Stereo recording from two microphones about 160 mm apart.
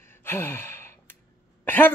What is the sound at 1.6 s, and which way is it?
Speech, 10° left (ahead or behind).